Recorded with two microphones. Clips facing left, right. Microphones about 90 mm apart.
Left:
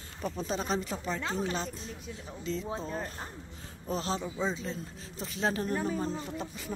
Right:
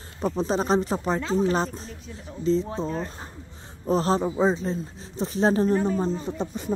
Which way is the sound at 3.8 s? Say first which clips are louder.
Right 11 dB; 40° right (ahead or behind).